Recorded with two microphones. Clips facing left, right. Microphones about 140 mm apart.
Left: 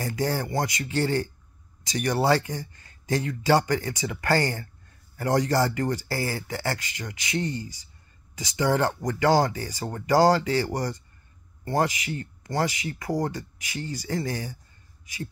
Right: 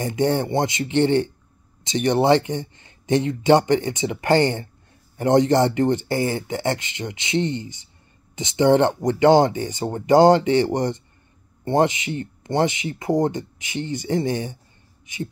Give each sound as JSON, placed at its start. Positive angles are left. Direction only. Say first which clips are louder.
{"t": 0.0, "sound": "speech", "louder": "right 6 dB", "side_deg": -25}